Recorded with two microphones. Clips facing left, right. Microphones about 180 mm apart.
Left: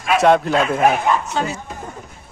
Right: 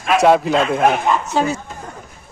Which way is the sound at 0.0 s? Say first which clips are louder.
Right 1 dB; centre (ahead or behind).